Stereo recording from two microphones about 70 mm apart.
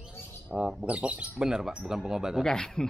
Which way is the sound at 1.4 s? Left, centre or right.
Centre.